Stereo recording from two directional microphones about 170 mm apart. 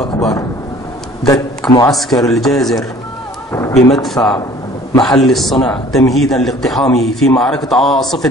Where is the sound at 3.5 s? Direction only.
15° left (ahead or behind).